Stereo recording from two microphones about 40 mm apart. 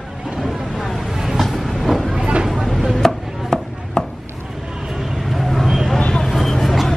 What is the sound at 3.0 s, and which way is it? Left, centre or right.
Chopping, centre.